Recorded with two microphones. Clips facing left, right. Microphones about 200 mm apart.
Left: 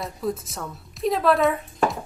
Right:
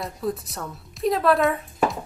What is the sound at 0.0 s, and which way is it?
A woman's voice, centre (ahead or behind).